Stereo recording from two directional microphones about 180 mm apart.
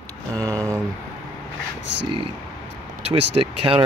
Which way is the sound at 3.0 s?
30° right (ahead or behind).